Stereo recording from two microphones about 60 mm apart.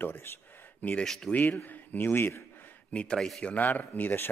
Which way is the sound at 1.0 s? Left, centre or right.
Centre.